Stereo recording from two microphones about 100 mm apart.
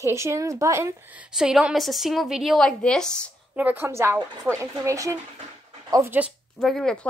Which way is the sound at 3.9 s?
25° right (ahead or behind).